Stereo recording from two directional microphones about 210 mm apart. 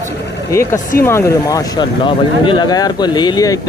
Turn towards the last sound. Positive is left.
turn(degrees=15)  # may be behind; listen again after turning